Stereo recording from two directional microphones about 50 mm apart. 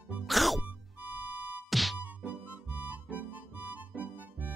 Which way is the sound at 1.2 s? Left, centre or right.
Right.